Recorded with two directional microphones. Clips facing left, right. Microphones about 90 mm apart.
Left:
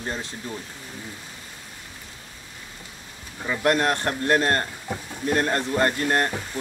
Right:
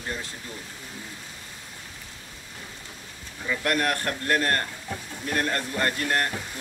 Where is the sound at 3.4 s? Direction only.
25° left (ahead or behind).